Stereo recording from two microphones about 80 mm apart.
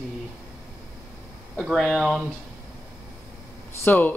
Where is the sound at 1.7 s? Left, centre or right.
Centre.